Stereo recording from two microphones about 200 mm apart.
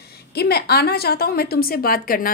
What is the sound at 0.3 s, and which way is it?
A woman's voice, 55° left (ahead or behind).